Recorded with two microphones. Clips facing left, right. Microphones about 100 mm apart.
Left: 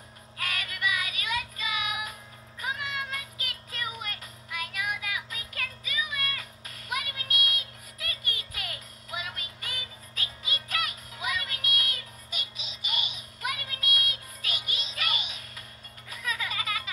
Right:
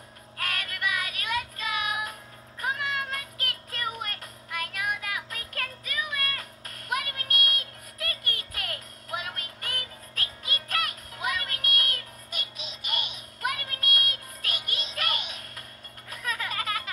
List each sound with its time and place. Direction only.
0.4 s child singing: 45° right (ahead or behind)
2.6 s music: 45° right (ahead or behind)